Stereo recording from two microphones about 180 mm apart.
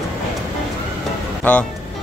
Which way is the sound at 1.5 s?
5° left (ahead or behind).